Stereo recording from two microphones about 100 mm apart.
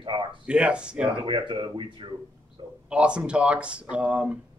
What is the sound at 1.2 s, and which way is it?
A man's voice, 55° right (ahead or behind).